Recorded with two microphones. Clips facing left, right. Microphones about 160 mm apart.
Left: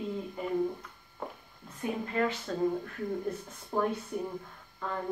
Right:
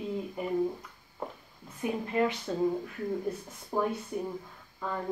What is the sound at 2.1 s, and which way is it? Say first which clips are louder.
Speech: right 3 dB; 15° right (ahead or behind).